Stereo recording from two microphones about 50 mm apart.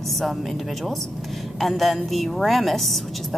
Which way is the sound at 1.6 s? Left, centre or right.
Centre.